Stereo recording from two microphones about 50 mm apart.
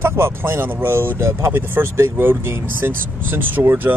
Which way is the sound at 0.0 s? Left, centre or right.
Right.